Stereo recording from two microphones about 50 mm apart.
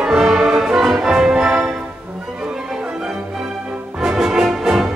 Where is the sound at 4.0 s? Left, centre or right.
Centre.